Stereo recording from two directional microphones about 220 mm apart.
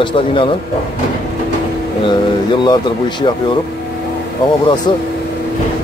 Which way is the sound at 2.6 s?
20° left (ahead or behind).